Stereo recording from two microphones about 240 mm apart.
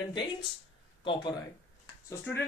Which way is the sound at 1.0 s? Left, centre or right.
Centre.